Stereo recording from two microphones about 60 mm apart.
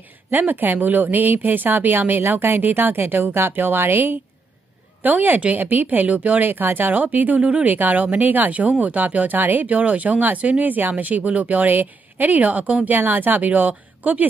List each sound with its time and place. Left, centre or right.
0.3 s speech: right